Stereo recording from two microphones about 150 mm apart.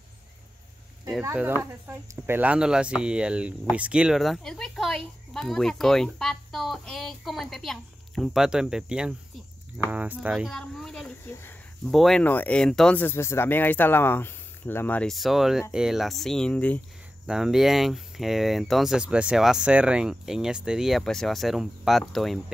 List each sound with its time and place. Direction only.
1.2 s speech: 15° right (ahead or behind); by 11.1 s 5° left (ahead or behind)
11.2 s speech: 15° left (ahead or behind)
11.9 s speech: centre (ahead or behind)
17.3 s speech: 5° right (ahead or behind)